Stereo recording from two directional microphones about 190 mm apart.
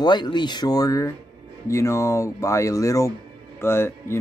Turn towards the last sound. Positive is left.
turn(degrees=15)  # may be behind; listen again after turning